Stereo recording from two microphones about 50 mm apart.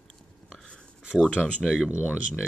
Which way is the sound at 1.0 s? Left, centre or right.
Centre.